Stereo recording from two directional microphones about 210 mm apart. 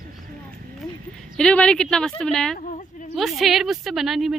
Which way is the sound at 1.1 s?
5° left (ahead or behind).